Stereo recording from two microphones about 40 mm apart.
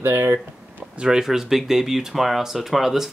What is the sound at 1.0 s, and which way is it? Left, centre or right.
Speech, right.